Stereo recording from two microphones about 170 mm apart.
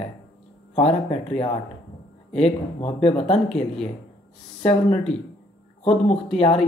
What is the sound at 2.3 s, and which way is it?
Speech, 40° left (ahead or behind).